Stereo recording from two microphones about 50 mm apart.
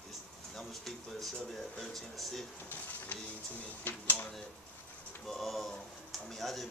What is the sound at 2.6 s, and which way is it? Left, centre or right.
Speech, left.